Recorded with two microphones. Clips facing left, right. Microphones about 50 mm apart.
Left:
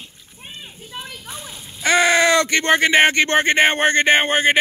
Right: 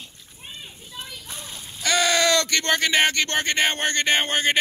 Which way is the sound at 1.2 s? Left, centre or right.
Centre.